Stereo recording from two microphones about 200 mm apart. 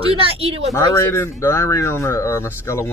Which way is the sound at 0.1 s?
30° right (ahead or behind).